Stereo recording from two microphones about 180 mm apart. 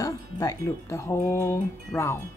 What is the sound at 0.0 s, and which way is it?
Speech, 20° left (ahead or behind).